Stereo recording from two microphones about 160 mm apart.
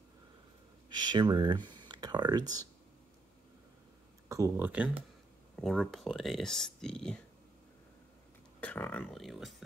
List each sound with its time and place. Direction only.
0.8 s speech: 30° right (ahead or behind)
1.7 s a sound: 30° right (ahead or behind)
4.3 s speech: 15° right (ahead or behind)
5.6 s speech: centre (ahead or behind)
8.5 s speech: 10° left (ahead or behind)